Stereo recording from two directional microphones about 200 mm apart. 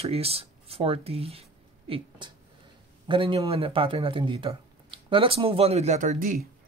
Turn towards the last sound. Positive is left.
turn(degrees=-45)  # may be behind; listen again after turning